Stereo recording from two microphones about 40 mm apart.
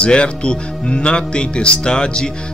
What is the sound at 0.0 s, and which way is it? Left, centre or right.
Speech, left.